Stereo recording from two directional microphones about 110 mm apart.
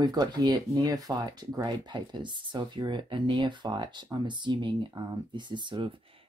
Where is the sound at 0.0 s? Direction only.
40° right (ahead or behind).